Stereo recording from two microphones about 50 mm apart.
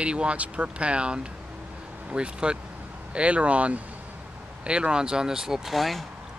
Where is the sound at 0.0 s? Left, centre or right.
Right; by 6.0 s centre.